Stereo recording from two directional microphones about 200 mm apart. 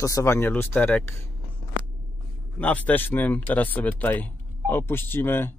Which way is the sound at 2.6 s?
10° left (ahead or behind).